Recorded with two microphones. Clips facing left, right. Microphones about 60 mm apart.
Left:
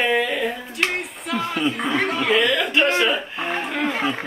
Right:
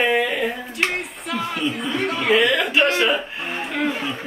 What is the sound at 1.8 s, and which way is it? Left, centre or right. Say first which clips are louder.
Speech: left 3 dB; left.